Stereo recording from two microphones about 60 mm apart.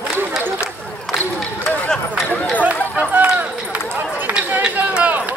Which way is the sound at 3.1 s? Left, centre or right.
Right.